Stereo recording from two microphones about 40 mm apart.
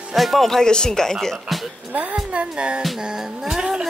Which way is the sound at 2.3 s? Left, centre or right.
Right.